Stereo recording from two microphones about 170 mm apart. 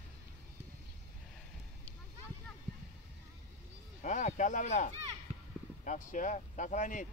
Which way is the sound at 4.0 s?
45° left (ahead or behind).